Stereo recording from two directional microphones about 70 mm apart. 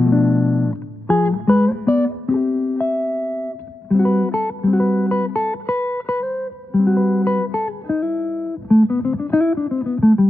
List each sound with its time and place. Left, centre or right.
0.0 s music: left